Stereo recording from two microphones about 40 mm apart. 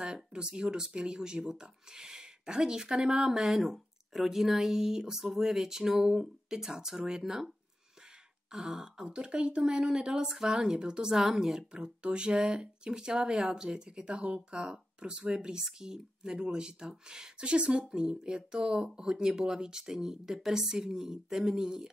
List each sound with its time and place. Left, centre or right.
0.0 s speech: right
8.5 s speech: centre